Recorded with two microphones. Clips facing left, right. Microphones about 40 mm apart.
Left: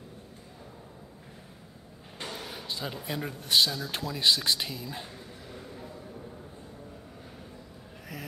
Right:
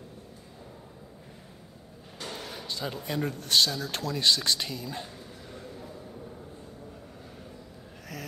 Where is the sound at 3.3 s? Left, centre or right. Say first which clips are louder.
Left 1 dB; centre.